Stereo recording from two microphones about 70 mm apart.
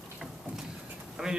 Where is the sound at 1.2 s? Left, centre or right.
Centre.